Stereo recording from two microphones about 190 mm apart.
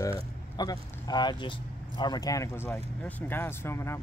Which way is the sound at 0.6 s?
20° left (ahead or behind).